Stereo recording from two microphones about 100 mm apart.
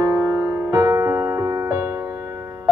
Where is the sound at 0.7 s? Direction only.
30° right (ahead or behind).